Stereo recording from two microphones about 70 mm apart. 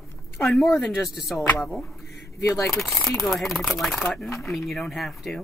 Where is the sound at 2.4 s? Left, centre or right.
Left.